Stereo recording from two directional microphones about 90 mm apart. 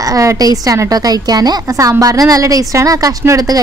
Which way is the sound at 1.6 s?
40° right (ahead or behind).